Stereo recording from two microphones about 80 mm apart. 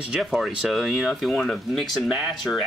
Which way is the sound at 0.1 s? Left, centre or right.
Centre.